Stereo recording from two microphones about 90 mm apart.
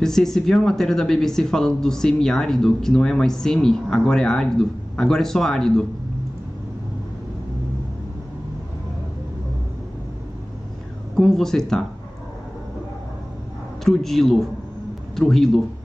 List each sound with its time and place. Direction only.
0.0 s speech: 5° left (ahead or behind)
11.1 s speech: 5° left (ahead or behind)
13.8 s speech: 5° left (ahead or behind)